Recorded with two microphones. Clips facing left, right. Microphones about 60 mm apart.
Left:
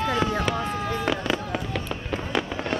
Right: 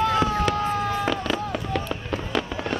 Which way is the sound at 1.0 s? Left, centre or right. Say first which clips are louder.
Right 1 dB; centre.